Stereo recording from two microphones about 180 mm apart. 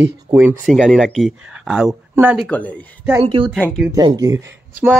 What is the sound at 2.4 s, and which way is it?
Speech, 10° left (ahead or behind).